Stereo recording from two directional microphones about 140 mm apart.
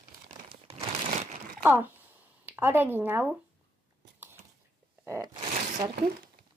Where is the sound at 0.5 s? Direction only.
45° right (ahead or behind).